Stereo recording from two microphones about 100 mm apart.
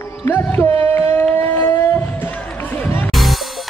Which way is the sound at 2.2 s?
20° left (ahead or behind).